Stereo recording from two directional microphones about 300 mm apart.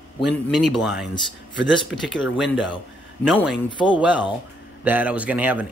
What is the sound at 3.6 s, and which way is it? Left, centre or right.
Speech, centre.